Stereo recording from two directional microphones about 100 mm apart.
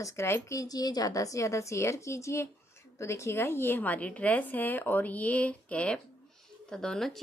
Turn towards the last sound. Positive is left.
turn(degrees=5)  # may be behind; listen again after turning